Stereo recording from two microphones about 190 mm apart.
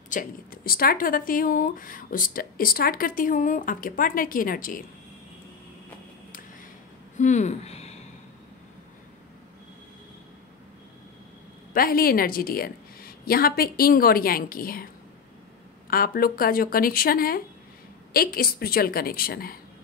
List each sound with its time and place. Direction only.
0.1 s speech: 45° left (ahead or behind)
7.2 s speech: 40° left (ahead or behind)
11.7 s speech: 50° left (ahead or behind)
15.9 s speech: 50° left (ahead or behind)